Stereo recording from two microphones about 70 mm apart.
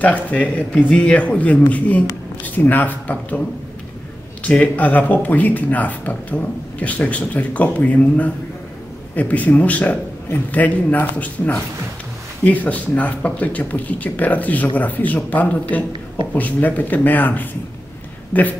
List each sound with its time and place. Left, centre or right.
0.0 s speech: centre